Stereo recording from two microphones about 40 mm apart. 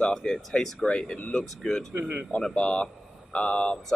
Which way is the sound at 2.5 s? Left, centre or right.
Left.